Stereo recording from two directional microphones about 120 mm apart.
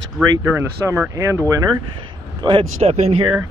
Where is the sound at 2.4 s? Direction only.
45° right (ahead or behind).